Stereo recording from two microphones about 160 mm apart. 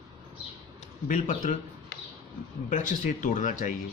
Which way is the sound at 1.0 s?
55° left (ahead or behind).